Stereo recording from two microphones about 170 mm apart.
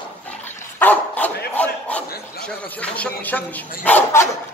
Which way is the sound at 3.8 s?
15° left (ahead or behind).